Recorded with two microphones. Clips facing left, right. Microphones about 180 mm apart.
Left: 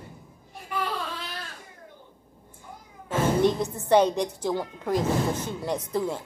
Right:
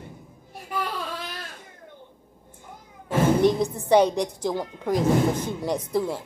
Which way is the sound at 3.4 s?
10° right (ahead or behind).